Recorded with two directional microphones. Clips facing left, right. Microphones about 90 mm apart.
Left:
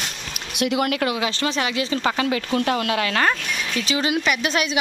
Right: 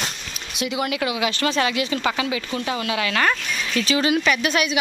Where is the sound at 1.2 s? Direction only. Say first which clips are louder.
Right 2 dB; 25° left (ahead or behind).